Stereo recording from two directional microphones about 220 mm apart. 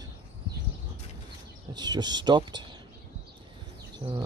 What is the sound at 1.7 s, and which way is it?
Speech, 20° right (ahead or behind).